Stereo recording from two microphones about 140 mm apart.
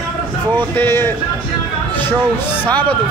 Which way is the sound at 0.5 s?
15° left (ahead or behind).